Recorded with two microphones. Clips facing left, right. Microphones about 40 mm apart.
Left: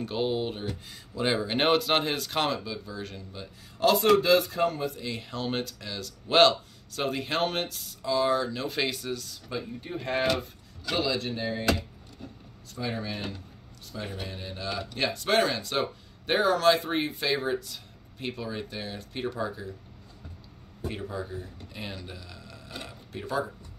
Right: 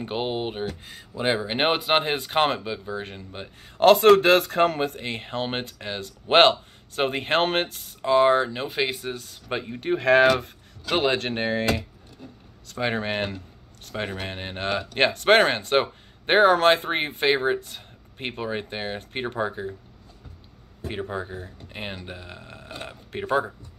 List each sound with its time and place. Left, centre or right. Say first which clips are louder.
0.0 s speech: right 1 dB; right
9.5 s speech: right 9 dB; right
10.4 s speech: even; right
12.6 s speech: right 7 dB; right
20.9 s speech: right 6 dB; right